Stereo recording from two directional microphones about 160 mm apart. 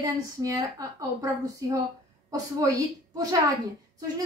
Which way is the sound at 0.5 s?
20° right (ahead or behind).